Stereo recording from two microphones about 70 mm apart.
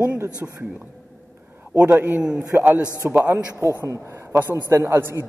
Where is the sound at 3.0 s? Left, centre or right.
Right.